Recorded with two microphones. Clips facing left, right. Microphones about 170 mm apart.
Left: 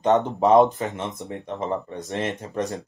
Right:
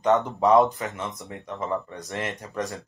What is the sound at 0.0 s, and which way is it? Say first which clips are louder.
Speech: left 2 dB; 20° left (ahead or behind).